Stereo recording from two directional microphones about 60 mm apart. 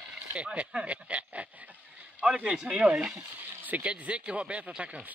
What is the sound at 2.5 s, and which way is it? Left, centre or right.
Speech, centre.